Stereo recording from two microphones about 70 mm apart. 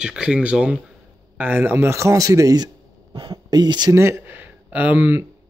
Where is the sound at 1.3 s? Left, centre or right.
Right.